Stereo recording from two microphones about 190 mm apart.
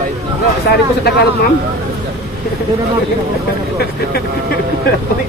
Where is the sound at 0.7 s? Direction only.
60° left (ahead or behind).